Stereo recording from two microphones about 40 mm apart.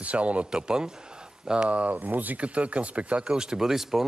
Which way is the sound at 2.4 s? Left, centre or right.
Right.